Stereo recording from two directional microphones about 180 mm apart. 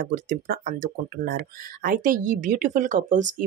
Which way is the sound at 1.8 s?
50° right (ahead or behind).